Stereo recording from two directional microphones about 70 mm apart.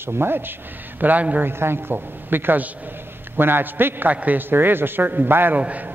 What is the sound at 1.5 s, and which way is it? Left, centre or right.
A woman's voice, right.